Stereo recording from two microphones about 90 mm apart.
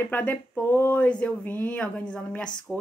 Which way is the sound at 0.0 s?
20° left (ahead or behind).